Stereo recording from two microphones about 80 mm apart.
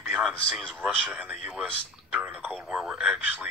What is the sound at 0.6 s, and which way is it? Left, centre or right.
Speech, centre.